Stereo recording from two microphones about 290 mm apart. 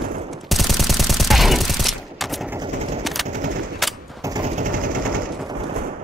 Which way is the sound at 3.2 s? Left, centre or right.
Right.